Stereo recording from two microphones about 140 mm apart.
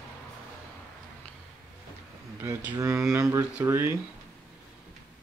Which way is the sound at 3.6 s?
15° right (ahead or behind).